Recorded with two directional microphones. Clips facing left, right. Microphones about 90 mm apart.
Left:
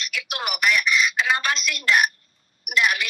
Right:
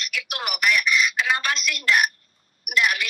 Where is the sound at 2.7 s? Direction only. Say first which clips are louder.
Left 1 dB; 25° left (ahead or behind).